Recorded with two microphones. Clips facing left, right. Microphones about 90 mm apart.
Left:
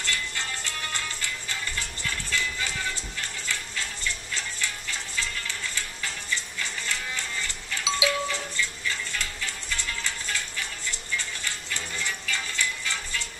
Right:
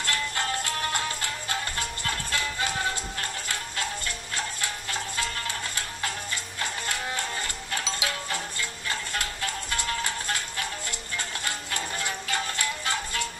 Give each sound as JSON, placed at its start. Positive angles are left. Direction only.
{"t": 0.0, "sound": "music", "side_deg": -50}